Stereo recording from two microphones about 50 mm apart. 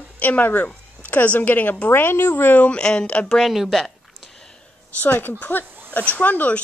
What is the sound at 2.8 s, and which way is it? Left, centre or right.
Speech, centre.